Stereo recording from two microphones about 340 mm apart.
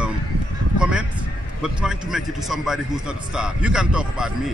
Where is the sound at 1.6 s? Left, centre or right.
Centre.